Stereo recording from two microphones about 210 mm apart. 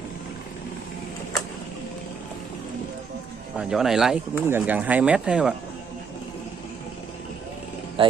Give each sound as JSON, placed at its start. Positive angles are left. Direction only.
{"t": 3.5, "sound": "speech", "side_deg": -5}
{"t": 8.0, "sound": "vehicle", "side_deg": -25}